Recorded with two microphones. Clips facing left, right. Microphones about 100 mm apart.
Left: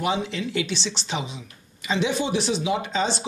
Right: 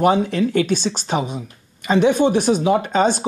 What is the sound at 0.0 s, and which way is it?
Speech, 50° right (ahead or behind).